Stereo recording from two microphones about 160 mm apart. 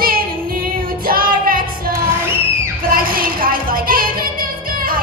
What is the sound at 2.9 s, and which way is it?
Music, 65° right (ahead or behind).